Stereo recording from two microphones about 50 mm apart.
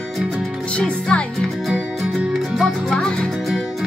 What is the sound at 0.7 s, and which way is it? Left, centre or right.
Music, left.